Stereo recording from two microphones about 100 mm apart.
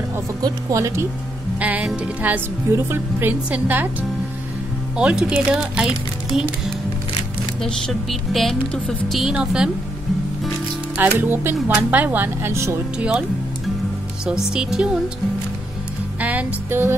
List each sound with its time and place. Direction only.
0.4 s speech: 35° right (ahead or behind)
1.6 s music: 15° right (ahead or behind)
2.2 s a woman's voice: 20° right (ahead or behind)
4.9 s a woman's voice: 10° right (ahead or behind)
7.6 s a woman's voice: 5° left (ahead or behind)
9.2 s a woman's voice: 10° right (ahead or behind)
11.0 s speech: 20° right (ahead or behind)
14.5 s a woman's voice: 5° right (ahead or behind)
16.2 s a woman's voice: 15° right (ahead or behind)